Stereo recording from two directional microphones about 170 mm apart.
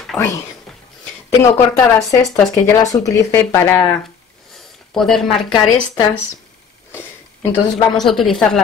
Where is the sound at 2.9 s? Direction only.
20° left (ahead or behind).